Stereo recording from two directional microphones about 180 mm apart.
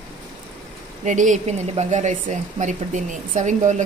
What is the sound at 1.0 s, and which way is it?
A woman's voice, 45° right (ahead or behind).